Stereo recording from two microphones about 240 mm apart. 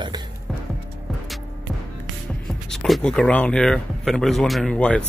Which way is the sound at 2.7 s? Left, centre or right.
Centre.